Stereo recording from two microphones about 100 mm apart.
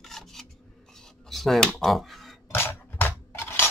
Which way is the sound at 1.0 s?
Centre (ahead or behind).